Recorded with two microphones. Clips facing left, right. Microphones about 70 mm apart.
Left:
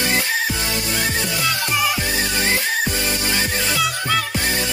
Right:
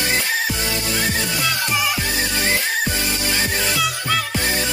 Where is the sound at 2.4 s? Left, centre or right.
Left.